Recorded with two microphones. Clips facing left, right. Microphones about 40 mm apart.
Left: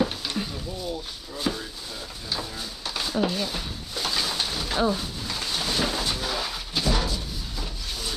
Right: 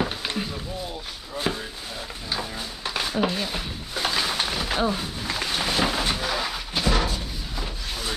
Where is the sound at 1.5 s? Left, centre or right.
Right.